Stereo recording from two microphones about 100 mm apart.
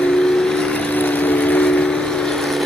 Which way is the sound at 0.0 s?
5° left (ahead or behind).